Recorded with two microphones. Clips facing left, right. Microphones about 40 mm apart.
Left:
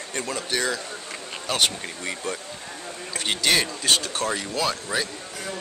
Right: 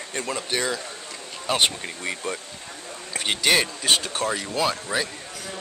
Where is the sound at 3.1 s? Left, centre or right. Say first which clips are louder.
Right 1 dB; centre.